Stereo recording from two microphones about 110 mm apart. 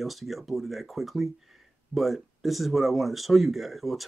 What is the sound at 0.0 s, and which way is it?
Speech, centre (ahead or behind).